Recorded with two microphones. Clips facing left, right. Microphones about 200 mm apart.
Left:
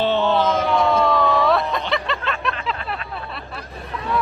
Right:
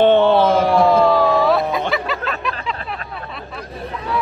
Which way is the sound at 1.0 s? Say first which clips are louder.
Right 4 dB; 5° right (ahead or behind).